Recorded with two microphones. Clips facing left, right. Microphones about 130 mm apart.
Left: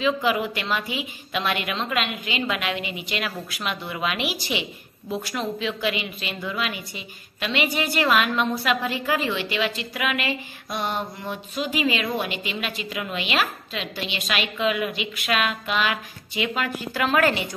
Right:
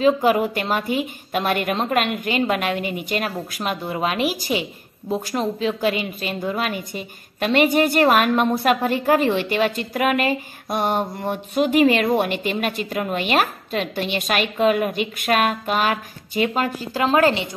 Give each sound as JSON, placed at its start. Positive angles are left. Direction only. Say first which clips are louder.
{"t": 0.0, "sound": "a woman's voice", "louder": "right 6 dB", "side_deg": -45}